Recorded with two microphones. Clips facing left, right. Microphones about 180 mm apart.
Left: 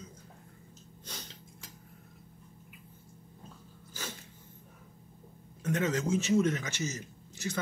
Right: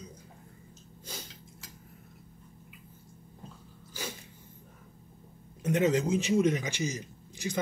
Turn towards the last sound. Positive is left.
turn(degrees=-15)  # may be behind; listen again after turning